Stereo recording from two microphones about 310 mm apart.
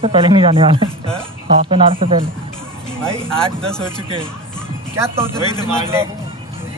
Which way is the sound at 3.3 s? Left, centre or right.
Centre.